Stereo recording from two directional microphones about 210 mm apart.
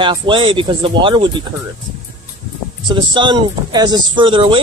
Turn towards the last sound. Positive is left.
turn(degrees=-25)  # may be behind; listen again after turning